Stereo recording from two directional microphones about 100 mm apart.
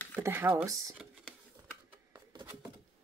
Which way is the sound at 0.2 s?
25° right (ahead or behind).